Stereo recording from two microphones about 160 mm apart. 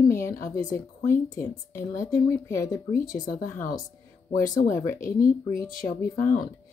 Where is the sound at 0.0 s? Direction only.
20° left (ahead or behind).